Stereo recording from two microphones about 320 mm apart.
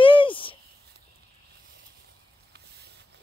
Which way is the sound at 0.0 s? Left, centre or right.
Centre.